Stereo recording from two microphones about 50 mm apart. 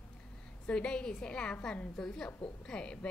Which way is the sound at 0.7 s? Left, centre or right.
Left.